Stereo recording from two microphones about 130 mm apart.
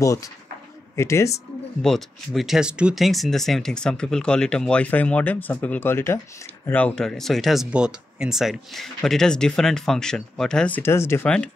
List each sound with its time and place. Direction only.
0.0 s speech: 25° left (ahead or behind)
1.8 s speech: centre (ahead or behind)
10.8 s speech: 20° left (ahead or behind)
11.2 s speech: 10° left (ahead or behind)